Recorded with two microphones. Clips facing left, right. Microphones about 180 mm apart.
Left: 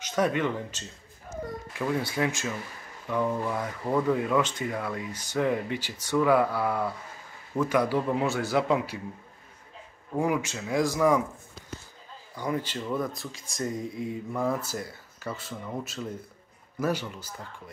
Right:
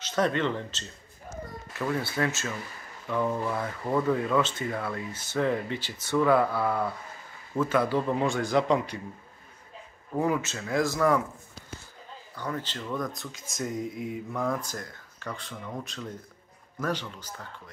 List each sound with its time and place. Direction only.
0.0 s speech: 10° left (ahead or behind)
10.1 s speech: 10° left (ahead or behind)
12.4 s speech: 10° left (ahead or behind)